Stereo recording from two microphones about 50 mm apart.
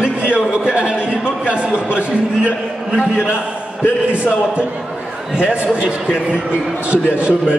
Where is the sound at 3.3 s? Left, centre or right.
Left.